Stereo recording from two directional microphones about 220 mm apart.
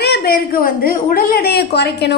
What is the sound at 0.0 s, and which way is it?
A woman's voice, 45° left (ahead or behind).